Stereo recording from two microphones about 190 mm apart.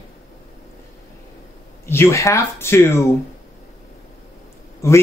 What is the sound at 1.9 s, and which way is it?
Speech, 15° left (ahead or behind).